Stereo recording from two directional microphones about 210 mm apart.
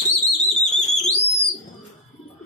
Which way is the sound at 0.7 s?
30° left (ahead or behind).